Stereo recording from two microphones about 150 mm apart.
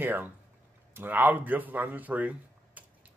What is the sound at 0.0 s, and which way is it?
A man's voice, 10° right (ahead or behind).